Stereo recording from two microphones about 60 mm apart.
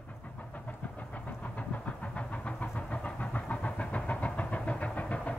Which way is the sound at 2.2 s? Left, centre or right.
Left.